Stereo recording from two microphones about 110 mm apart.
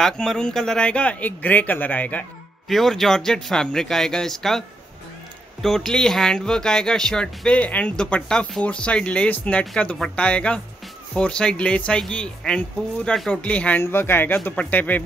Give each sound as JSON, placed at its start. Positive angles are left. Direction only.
{"t": 0.0, "sound": "speech", "side_deg": 5}
{"t": 2.7, "sound": "speech", "side_deg": 0}